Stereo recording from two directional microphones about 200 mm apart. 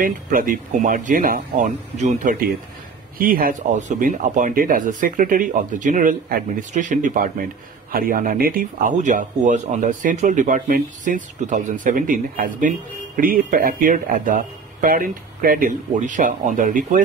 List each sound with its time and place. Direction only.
0.0 s speech: 45° right (ahead or behind)